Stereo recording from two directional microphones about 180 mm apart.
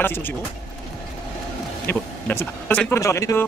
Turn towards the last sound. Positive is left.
turn(degrees=15)  # may be behind; listen again after turning